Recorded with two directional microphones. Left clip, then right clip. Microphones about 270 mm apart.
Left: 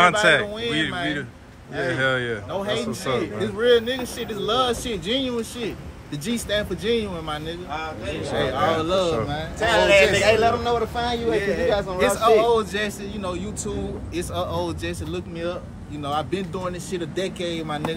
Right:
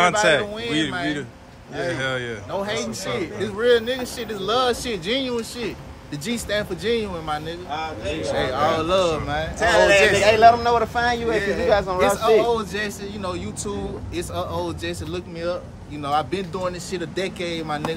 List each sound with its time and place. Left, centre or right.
0.0 s speech: centre
9.6 s a man's voice: right; by 11.3 s centre
11.3 s speech: centre